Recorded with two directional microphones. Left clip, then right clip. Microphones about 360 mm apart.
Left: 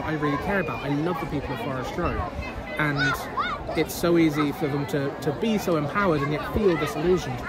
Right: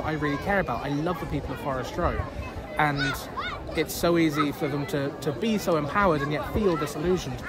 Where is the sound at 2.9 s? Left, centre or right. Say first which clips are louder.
Left 4 dB; centre.